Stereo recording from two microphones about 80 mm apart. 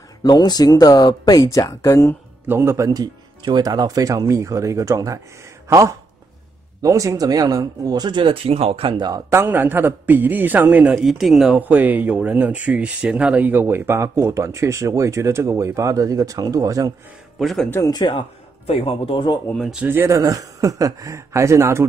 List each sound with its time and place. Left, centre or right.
0.2 s speech: left
2.4 s speech: right
2.9 s speech: right
8.8 s speech: right
9.3 s a man's voice: right
11.0 s speech: centre
11.5 s speech: right
17.4 s speech: centre
17.7 s speech: left
19.1 s speech: left
19.9 s speech: right
20.2 s speech: right